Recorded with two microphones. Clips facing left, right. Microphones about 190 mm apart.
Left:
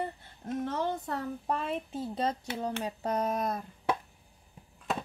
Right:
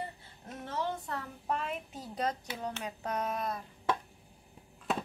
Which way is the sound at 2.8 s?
30° left (ahead or behind).